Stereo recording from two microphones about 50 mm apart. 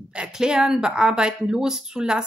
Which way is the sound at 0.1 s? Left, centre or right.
Centre.